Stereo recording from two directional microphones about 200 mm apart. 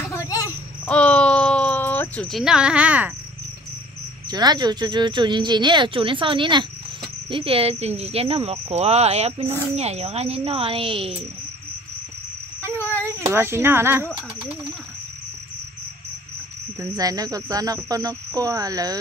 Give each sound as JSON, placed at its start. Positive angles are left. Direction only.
{"t": 0.0, "sound": "a sound", "side_deg": 15}
{"t": 0.8, "sound": "cricket", "side_deg": 5}
{"t": 4.3, "sound": "speech", "side_deg": -20}
{"t": 12.8, "sound": "cricket", "side_deg": 10}
{"t": 13.2, "sound": "speech", "side_deg": -15}
{"t": 16.8, "sound": "speech", "side_deg": -20}